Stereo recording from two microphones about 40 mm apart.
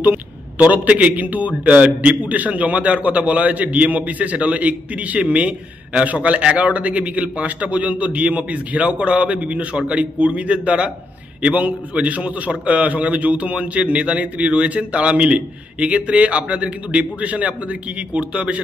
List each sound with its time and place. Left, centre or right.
0.6 s a man's voice: right